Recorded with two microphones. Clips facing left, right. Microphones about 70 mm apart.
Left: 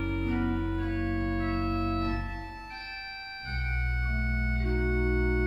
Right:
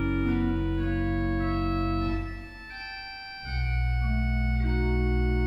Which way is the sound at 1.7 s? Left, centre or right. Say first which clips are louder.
Right 2 dB; right.